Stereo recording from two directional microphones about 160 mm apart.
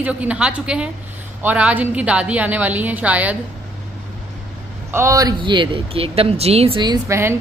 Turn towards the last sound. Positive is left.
turn(degrees=-15)  # may be behind; listen again after turning